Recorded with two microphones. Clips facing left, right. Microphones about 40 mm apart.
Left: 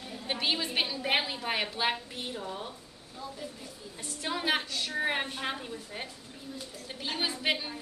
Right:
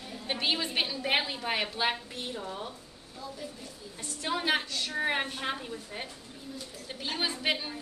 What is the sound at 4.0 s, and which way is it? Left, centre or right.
A woman's voice, centre.